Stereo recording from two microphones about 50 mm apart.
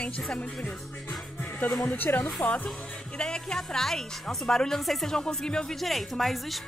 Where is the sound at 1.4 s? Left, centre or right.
Left.